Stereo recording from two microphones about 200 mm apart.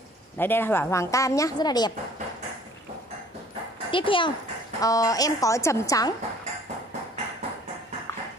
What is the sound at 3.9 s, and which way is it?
A woman's voice, 25° left (ahead or behind).